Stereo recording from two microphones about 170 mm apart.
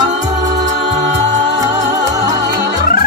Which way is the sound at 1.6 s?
20° right (ahead or behind).